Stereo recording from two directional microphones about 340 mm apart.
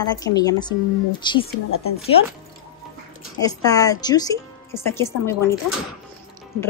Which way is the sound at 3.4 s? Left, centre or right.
Centre.